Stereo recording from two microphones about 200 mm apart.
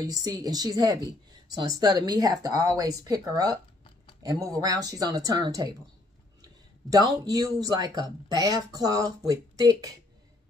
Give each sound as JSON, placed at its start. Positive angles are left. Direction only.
{"t": 0.0, "sound": "speech", "side_deg": -20}